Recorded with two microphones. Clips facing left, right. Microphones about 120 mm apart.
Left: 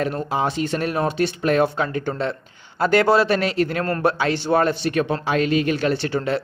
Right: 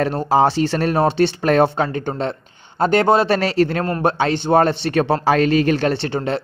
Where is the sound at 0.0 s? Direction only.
35° right (ahead or behind).